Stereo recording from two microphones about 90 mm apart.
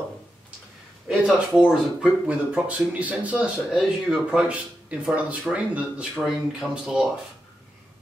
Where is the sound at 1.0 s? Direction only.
5° right (ahead or behind).